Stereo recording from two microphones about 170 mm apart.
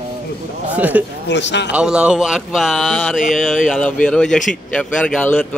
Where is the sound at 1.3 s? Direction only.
90° left.